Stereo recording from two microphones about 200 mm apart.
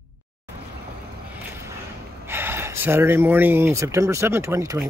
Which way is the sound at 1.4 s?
15° right (ahead or behind).